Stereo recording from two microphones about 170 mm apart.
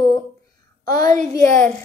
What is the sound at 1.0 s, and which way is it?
Speech, 45° right (ahead or behind).